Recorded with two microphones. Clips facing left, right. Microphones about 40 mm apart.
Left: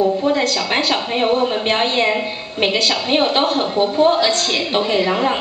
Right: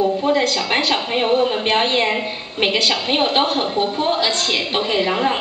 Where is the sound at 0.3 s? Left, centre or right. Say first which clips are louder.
Even; right.